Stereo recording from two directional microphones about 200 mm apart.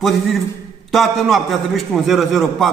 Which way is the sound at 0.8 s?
Centre (ahead or behind).